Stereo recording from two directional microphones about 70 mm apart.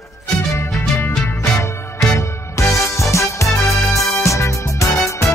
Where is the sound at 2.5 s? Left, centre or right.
Left.